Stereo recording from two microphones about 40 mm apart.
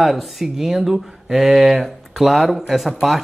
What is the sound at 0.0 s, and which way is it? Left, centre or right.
Speech, centre.